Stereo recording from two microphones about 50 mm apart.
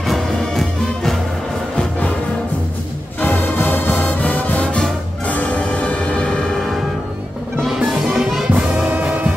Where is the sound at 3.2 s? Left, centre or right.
Left.